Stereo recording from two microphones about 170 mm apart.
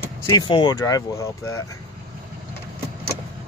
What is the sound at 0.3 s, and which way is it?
Speech, 25° left (ahead or behind).